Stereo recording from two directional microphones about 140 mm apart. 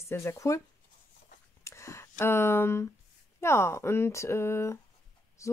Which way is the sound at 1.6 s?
20° left (ahead or behind).